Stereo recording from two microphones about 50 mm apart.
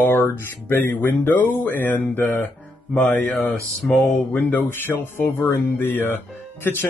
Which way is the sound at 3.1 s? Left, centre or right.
Left.